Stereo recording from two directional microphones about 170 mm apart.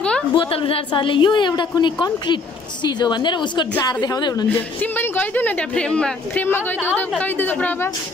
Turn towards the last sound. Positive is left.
turn(degrees=10)  # may be behind; listen again after turning